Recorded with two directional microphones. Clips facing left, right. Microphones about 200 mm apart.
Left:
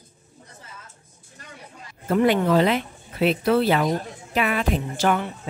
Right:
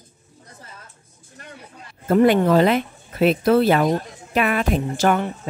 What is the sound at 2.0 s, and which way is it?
Speech, 45° right (ahead or behind).